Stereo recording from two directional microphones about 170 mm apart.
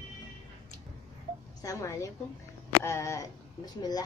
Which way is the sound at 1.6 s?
20° left (ahead or behind).